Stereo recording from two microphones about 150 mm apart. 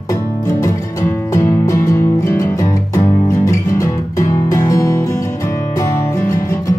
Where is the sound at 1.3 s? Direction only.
20° left (ahead or behind).